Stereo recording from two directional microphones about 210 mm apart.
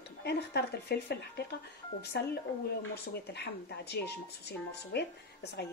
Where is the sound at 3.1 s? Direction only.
50° left (ahead or behind).